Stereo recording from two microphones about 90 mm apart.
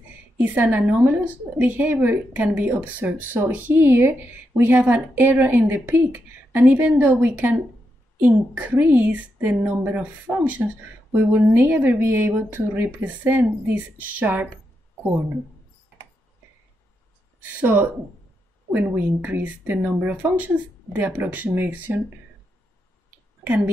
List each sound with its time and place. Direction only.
0.4 s a woman's voice: 20° right (ahead or behind)
17.4 s a woman's voice: 20° right (ahead or behind)